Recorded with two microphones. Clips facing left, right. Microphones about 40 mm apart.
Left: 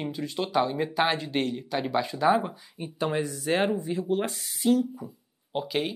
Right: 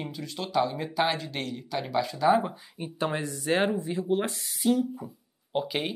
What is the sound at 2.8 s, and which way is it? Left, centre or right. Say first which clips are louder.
Speech: left 2 dB; centre.